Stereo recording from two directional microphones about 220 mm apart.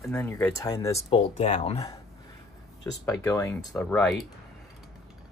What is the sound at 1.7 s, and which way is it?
Speech, 15° left (ahead or behind).